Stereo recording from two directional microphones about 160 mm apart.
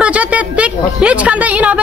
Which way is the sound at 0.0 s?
10° right (ahead or behind).